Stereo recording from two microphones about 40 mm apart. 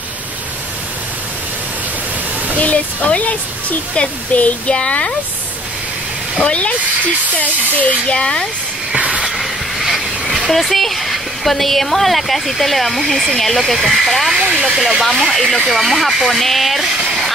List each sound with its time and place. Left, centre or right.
2.6 s speech: left
4.7 s speech: left
6.4 s speech: left
8.2 s speech: left
8.9 s hiss: right
9.4 s a sound: centre
10.5 s speech: centre